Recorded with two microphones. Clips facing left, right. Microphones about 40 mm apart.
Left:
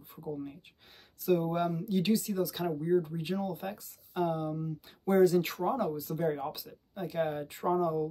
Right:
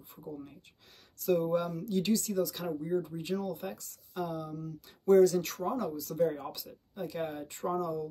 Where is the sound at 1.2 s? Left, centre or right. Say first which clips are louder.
Even; centre.